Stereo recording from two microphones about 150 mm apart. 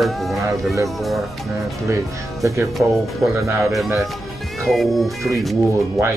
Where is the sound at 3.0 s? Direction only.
Centre (ahead or behind).